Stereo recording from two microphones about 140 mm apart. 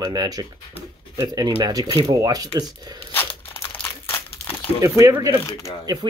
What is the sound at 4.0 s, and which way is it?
Crumpling, 15° left (ahead or behind).